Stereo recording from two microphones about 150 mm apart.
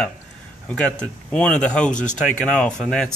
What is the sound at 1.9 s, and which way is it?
Speech, 55° left (ahead or behind).